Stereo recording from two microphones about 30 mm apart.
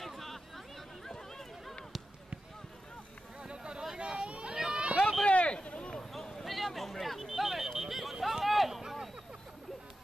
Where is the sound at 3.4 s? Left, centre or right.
Right.